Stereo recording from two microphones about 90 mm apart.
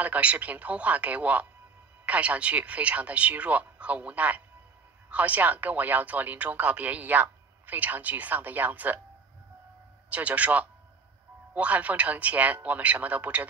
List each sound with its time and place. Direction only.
0.0 s speech: 15° right (ahead or behind)
10.0 s speech: 15° right (ahead or behind)